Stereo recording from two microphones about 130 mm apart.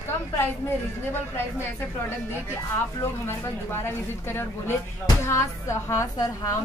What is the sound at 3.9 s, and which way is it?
A woman's voice, 20° left (ahead or behind).